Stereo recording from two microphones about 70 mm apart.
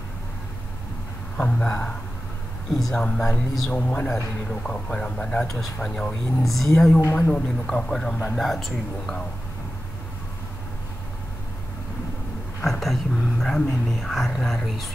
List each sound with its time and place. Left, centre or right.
1.3 s a man's voice: centre
2.7 s a man's voice: centre
3.7 s a man's voice: left
6.4 s speech: centre
7.2 s a man's voice: centre
8.3 s speech: centre
12.6 s speech: centre